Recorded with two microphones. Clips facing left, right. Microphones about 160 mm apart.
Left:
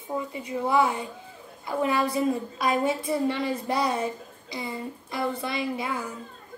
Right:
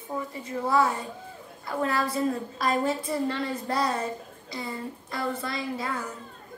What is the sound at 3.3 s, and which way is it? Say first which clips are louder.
A woman's voice: left 2 dB; 20° left (ahead or behind).